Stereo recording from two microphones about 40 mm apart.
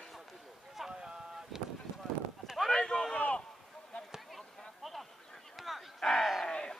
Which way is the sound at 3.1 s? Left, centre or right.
Left.